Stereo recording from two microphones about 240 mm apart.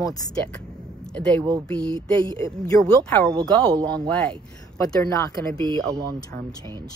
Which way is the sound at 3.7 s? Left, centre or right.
Centre.